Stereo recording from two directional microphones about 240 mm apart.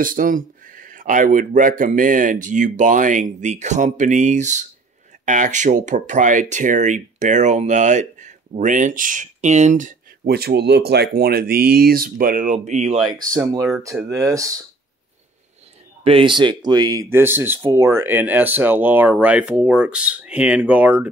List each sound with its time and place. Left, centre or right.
0.0 s speech: right
14.0 s speech: centre
16.0 s speech: right; by 21.1 s centre